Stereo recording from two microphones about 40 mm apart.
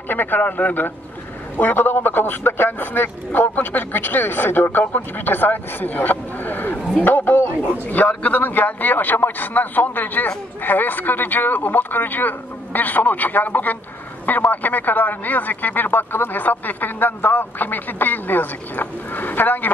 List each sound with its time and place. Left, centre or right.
0.1 s speech: left
1.6 s a man's voice: left
7.9 s speech: left